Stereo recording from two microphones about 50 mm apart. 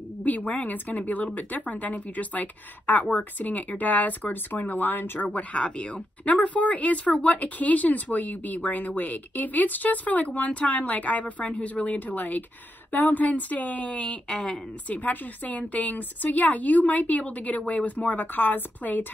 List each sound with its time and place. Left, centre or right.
0.2 s speech: left
5.3 s speech: left
14.9 s speech: left